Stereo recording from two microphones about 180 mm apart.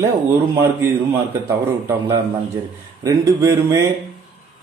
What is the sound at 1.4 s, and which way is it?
Speech, 10° right (ahead or behind).